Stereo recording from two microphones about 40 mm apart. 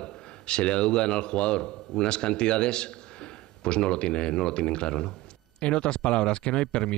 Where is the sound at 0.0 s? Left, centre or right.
Left.